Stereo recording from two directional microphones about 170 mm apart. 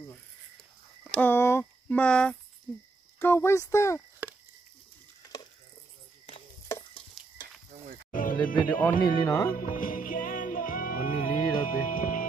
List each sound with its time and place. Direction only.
1.1 s speech: 10° left (ahead or behind)
7.2 s frying: centre (ahead or behind)
8.1 s music: 55° left (ahead or behind)
8.5 s speech: 10° left (ahead or behind)
9.6 s music: 55° left (ahead or behind)